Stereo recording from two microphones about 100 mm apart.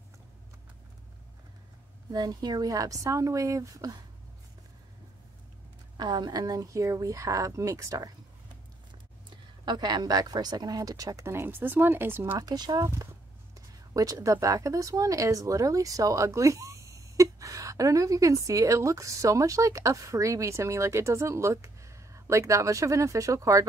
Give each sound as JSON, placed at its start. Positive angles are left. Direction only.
{"t": 2.1, "sound": "speech", "side_deg": -40}
{"t": 5.9, "sound": "speech", "side_deg": -45}
{"t": 9.3, "sound": "speech", "side_deg": -45}
{"t": 12.4, "sound": "a woman's voice", "side_deg": -40}